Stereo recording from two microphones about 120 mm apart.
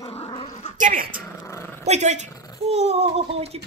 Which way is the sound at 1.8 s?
70° right (ahead or behind).